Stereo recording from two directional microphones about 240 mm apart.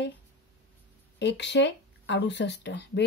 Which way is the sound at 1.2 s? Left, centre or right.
Left.